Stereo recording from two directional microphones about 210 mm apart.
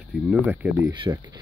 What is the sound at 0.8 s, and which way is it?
Speech, 20° right (ahead or behind).